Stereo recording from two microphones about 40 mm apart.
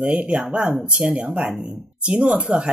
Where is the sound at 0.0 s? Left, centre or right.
Right.